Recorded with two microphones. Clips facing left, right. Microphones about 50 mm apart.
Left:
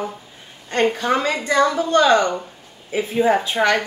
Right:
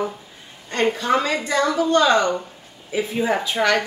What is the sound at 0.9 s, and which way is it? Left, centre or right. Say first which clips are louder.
A woman's voice: even; left.